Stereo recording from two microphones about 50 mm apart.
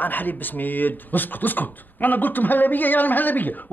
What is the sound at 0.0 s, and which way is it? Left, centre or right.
A woman's voice, left.